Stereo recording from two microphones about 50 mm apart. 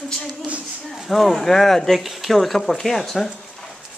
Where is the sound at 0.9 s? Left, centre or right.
Centre.